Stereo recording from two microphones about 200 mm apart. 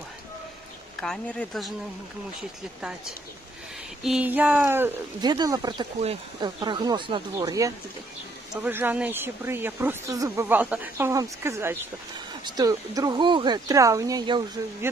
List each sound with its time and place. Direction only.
1.0 s speech: centre (ahead or behind)
2.8 s speech: 5° right (ahead or behind); by 14.4 s 20° right (ahead or behind)